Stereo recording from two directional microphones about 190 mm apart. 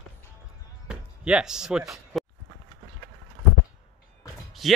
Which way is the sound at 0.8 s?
5° right (ahead or behind).